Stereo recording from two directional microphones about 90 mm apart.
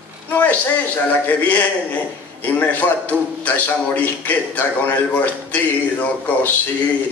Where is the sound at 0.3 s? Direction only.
20° left (ahead or behind).